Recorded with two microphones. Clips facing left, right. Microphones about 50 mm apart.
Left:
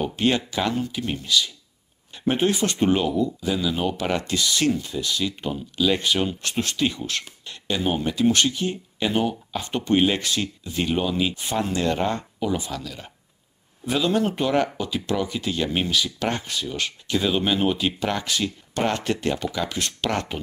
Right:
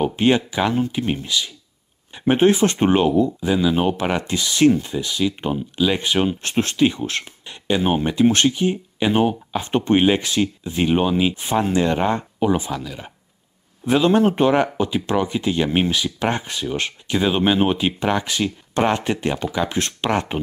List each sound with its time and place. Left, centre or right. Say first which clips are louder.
0.0 s speech: right 5 dB; right
8.5 s speech: right 6 dB; right
12.7 s speech: right 4 dB; centre
13.8 s speech: right 6 dB; right